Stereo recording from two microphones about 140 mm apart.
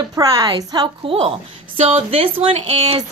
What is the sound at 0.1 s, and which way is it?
Speech, 25° right (ahead or behind).